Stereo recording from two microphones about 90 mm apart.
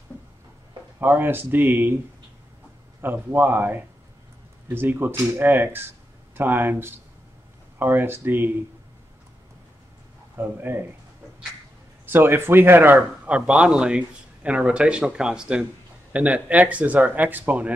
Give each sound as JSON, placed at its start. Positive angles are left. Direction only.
{"t": 0.9, "sound": "speech", "side_deg": -20}
{"t": 3.0, "sound": "speech", "side_deg": -20}
{"t": 10.3, "sound": "speech", "side_deg": -25}
{"t": 12.1, "sound": "a man's voice", "side_deg": -25}